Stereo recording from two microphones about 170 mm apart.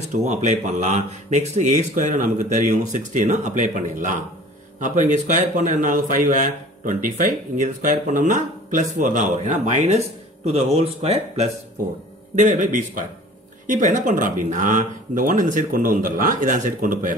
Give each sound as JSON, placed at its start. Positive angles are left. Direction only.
{"t": 0.1, "sound": "speech", "side_deg": -45}
{"t": 12.4, "sound": "speech", "side_deg": -45}